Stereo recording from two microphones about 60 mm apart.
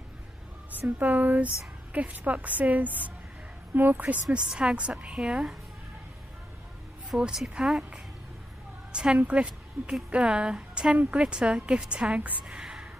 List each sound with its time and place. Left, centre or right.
0.7 s speech: right; by 5.6 s centre
7.2 s a woman's voice: centre